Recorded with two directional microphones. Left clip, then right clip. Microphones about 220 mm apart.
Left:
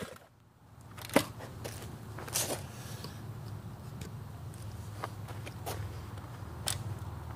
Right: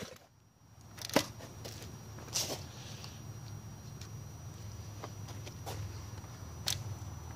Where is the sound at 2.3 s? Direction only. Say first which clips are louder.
Left 1 dB; 35° left (ahead or behind).